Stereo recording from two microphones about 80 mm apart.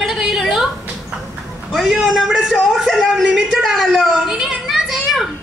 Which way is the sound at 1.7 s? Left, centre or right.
Centre.